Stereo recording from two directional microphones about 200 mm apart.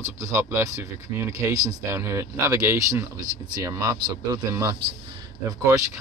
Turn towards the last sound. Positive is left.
turn(degrees=-15)  # may be behind; listen again after turning